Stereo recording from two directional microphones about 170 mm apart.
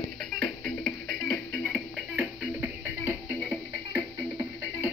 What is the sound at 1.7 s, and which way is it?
Music, 5° right (ahead or behind).